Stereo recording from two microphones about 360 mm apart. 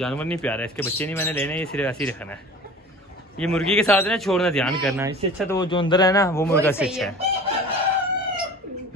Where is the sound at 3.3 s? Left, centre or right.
Centre.